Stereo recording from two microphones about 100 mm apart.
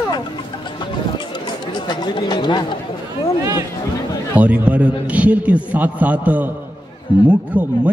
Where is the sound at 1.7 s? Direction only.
45° left (ahead or behind).